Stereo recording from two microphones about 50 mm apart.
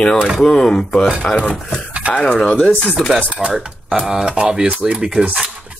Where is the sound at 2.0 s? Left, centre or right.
Right.